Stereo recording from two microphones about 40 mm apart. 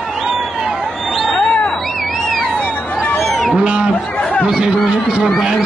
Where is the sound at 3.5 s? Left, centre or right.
Right.